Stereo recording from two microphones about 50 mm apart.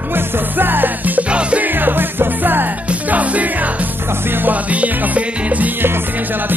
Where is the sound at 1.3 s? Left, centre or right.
Right.